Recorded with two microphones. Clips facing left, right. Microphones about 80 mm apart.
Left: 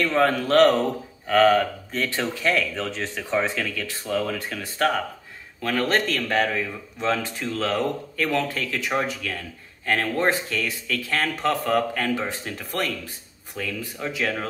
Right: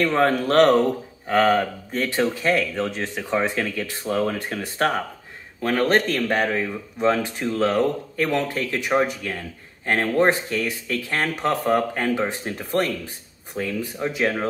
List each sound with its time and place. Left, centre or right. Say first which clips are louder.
0.0 s speech: right 1 dB; right